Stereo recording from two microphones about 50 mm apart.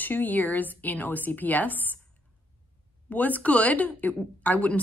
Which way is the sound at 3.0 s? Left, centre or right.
Left.